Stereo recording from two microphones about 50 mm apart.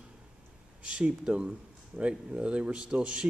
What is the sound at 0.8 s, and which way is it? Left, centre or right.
Speech, right.